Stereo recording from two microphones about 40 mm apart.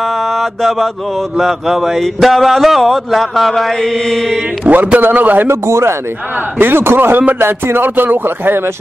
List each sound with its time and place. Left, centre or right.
0.4 s mantra: centre
1.4 s speech: centre
4.7 s a man's voice: right
5.0 s a man's voice: right
6.6 s speech: right